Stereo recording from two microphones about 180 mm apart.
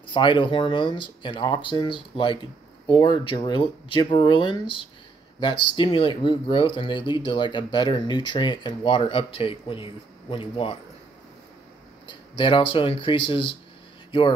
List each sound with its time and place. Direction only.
0.0 s speech: 25° left (ahead or behind)
12.1 s speech: 25° left (ahead or behind)